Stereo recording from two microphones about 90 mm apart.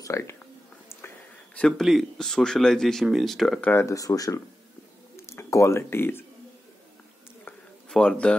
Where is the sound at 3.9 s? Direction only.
40° left (ahead or behind).